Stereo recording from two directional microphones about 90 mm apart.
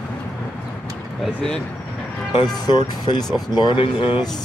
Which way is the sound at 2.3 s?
50° left (ahead or behind).